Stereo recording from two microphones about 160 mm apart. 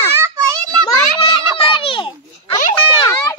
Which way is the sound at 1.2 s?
35° left (ahead or behind).